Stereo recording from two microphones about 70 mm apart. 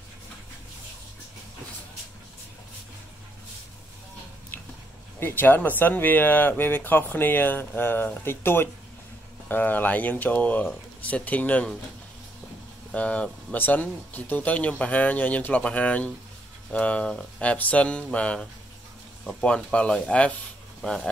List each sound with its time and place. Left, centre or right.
4.5 s a sound: left
5.2 s speech: left
12.9 s speech: centre